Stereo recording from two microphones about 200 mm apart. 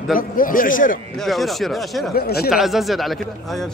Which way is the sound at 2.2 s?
50° left (ahead or behind).